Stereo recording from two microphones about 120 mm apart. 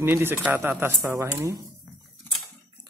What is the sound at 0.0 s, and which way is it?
Speech, 20° right (ahead or behind).